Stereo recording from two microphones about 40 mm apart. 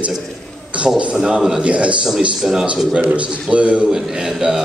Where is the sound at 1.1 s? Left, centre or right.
Centre.